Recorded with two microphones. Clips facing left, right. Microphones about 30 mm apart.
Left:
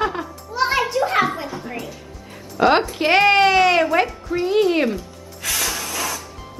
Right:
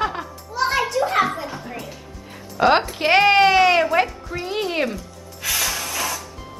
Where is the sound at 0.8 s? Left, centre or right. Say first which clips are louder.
Left 1 dB; centre.